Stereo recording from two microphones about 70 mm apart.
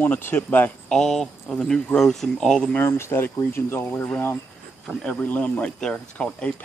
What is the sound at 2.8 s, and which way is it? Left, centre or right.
Speech, left.